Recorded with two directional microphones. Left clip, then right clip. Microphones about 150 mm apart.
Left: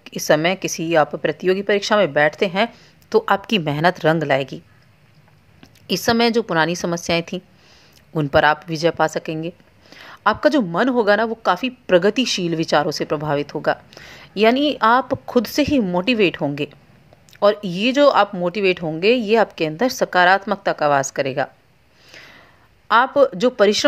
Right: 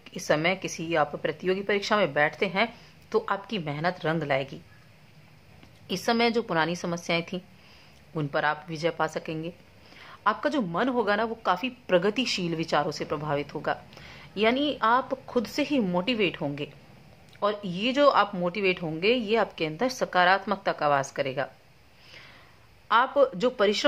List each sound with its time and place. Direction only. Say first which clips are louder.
0.0 s a woman's voice: left 8 dB; 35° left (ahead or behind)
3.3 s a woman's voice: left 12 dB; 50° left (ahead or behind)
5.9 s a woman's voice: left 7 dB; 35° left (ahead or behind)
8.1 s a woman's voice: left 11 dB; 45° left (ahead or behind)
22.1 s a sound: left 7 dB; 35° left (ahead or behind)
22.8 s a woman's voice: left 7 dB; 35° left (ahead or behind)